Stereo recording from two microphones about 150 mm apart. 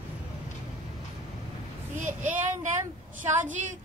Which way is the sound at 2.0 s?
55° right (ahead or behind).